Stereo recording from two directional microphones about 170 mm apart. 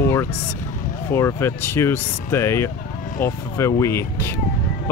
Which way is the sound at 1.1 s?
15° left (ahead or behind).